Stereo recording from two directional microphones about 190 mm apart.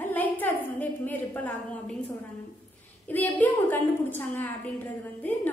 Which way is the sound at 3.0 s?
10° left (ahead or behind).